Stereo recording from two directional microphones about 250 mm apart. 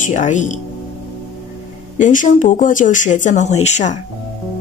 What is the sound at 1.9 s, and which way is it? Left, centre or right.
A woman's voice, left.